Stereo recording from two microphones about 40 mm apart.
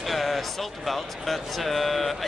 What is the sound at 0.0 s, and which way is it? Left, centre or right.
Speech, centre.